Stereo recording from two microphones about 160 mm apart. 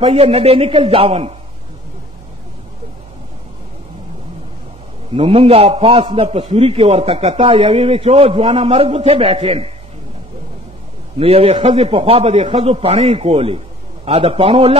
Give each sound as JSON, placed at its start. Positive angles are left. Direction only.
{"t": 0.0, "sound": "a man's voice", "side_deg": -40}
{"t": 5.1, "sound": "a man's voice", "side_deg": -35}
{"t": 11.1, "sound": "a man's voice", "side_deg": -40}